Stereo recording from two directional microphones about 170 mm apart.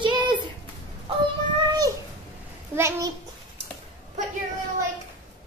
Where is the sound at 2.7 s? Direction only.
15° right (ahead or behind).